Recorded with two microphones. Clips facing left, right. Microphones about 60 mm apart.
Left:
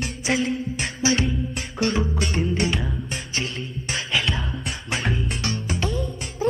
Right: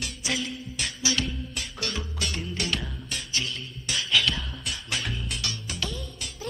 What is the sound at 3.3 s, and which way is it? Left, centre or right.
Music, left.